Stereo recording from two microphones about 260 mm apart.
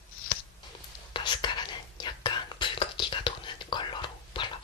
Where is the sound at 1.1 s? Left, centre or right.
Centre.